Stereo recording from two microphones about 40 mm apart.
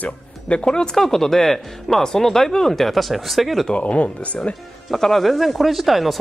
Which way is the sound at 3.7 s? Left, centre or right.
Left.